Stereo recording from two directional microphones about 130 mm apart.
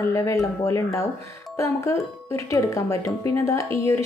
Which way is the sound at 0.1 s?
25° left (ahead or behind).